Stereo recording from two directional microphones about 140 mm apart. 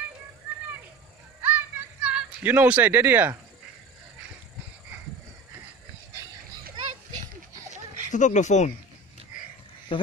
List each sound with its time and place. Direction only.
1.4 s music: 10° right (ahead or behind)
8.1 s speech: 60° left (ahead or behind)
9.9 s speech: 35° left (ahead or behind)